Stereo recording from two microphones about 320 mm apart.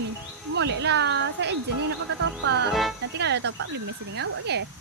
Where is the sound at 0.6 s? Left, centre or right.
Right.